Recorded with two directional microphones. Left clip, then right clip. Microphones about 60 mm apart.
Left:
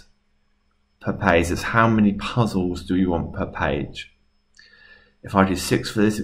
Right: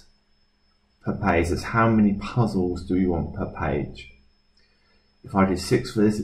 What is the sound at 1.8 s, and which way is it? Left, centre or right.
Speech, left.